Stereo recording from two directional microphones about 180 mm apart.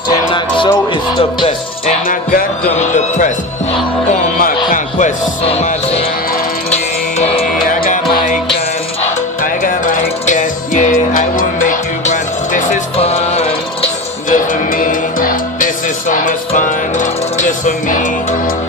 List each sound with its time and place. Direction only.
0.3 s music: 25° left (ahead or behind)
2.0 s music: 50° left (ahead or behind)
4.7 s speech: 45° left (ahead or behind)
6.7 s music: 35° left (ahead or behind)
7.6 s music: 50° left (ahead or behind)
14.3 s music: 50° left (ahead or behind)